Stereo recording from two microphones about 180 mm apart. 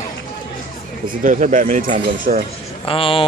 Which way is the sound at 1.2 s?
45° right (ahead or behind).